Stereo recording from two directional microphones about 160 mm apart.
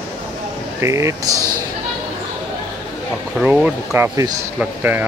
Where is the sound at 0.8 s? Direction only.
20° right (ahead or behind).